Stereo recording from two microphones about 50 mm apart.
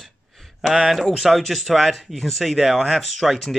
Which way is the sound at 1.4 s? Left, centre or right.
Centre.